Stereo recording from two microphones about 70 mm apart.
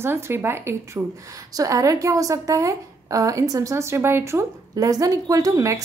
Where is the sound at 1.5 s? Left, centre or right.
Right.